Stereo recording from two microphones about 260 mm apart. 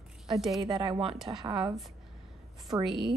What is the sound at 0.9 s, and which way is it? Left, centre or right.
Speech, centre.